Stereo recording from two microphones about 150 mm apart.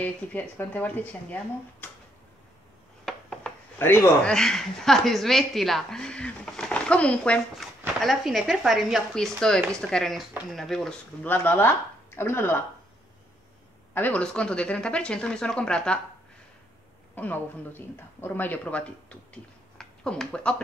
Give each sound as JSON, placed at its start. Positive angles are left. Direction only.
{"t": 0.0, "sound": "speech", "side_deg": 10}
{"t": 3.1, "sound": "chopping", "side_deg": 5}
{"t": 4.3, "sound": "a woman's voice", "side_deg": 5}
{"t": 11.2, "sound": "speech", "side_deg": 15}
{"t": 13.9, "sound": "speech", "side_deg": 10}
{"t": 17.1, "sound": "speech", "side_deg": 10}